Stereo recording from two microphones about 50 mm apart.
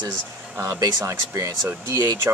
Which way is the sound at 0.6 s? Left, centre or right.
Right.